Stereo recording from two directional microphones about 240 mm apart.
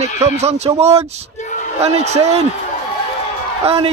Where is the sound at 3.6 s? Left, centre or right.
Right.